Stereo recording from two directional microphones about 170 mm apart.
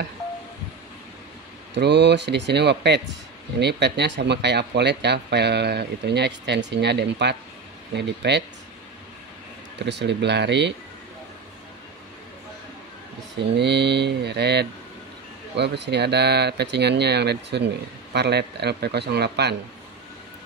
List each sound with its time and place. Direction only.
1.7 s speech: 90° right
9.8 s speech: 90° right
13.6 s speech: 85° right